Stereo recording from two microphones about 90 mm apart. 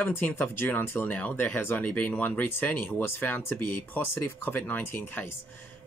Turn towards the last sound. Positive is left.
turn(degrees=25)  # may be behind; listen again after turning